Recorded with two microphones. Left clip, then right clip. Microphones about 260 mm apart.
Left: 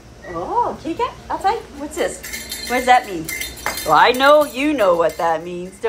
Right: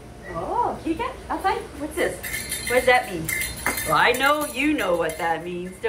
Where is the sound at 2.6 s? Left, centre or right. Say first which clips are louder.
Left 4 dB; centre.